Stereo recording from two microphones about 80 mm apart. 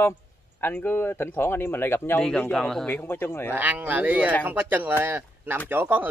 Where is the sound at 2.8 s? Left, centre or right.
Left.